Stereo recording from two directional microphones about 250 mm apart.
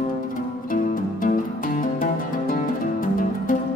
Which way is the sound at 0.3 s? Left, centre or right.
Left.